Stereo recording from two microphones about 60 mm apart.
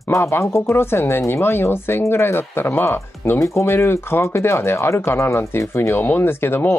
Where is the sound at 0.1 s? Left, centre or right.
Left.